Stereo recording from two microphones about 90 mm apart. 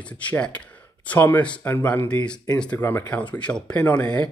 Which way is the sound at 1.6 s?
20° left (ahead or behind).